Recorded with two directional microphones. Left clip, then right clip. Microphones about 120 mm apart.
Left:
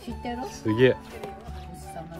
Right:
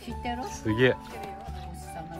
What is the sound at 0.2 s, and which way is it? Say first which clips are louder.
Speech: even; 20° right (ahead or behind).